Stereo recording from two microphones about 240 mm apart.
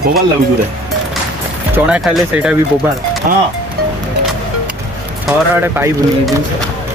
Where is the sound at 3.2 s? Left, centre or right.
Right.